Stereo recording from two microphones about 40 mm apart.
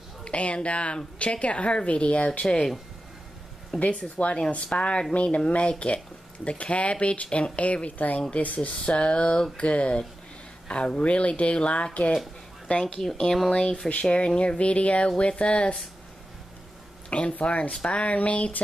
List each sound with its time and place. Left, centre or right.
0.2 s a woman's voice: left
2.4 s speech: centre
3.8 s a woman's voice: left
17.3 s speech: left